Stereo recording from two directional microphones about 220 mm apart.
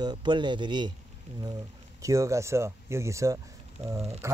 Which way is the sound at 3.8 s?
25° right (ahead or behind).